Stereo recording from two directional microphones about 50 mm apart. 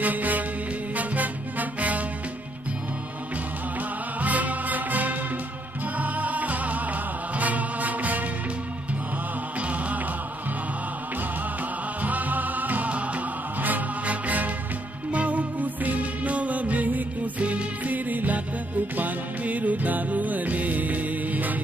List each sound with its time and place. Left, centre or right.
0.0 s music: right
4.2 s music: right
9.6 s music: right
12.0 s music: right